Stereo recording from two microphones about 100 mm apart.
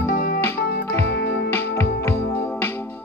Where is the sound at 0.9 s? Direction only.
25° left (ahead or behind).